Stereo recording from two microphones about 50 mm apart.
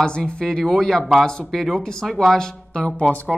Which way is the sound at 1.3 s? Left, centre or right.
Centre.